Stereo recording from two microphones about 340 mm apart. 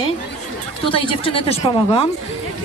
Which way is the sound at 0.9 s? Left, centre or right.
Centre.